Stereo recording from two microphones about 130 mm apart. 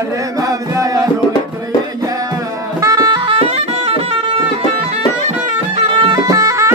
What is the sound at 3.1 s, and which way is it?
Music, 45° right (ahead or behind).